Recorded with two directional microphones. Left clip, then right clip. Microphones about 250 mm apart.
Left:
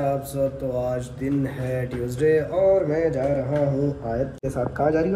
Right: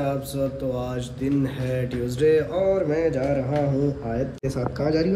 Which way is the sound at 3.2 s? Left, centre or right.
Centre.